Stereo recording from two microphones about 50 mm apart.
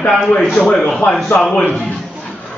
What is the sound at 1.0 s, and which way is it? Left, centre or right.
Speech, left.